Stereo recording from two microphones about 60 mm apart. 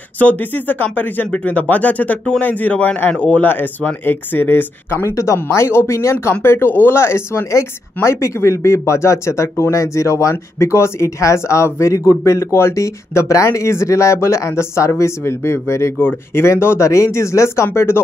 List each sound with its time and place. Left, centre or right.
0.2 s speech: left
10.6 s speech: left
12.7 s speech: left
16.0 s speech: left